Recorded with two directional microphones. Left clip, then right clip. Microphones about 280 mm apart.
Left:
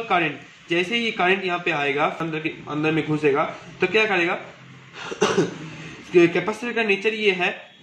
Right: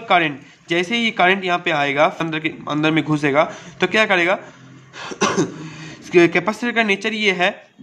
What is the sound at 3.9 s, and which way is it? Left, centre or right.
Speech, right.